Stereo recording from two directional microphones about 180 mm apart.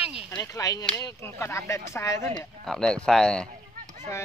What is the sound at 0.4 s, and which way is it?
Speech, 20° left (ahead or behind).